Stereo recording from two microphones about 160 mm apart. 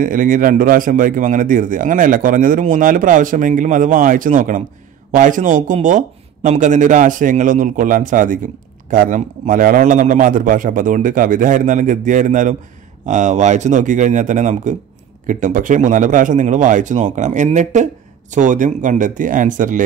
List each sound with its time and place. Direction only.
0.0 s a man's voice: 55° right (ahead or behind)